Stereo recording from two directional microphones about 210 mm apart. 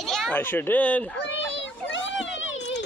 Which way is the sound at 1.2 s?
60° left (ahead or behind).